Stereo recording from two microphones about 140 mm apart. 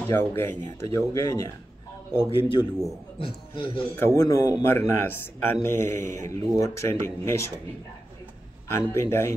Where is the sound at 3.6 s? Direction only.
40° left (ahead or behind).